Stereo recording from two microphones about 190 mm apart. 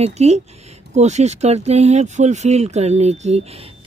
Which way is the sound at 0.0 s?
35° right (ahead or behind).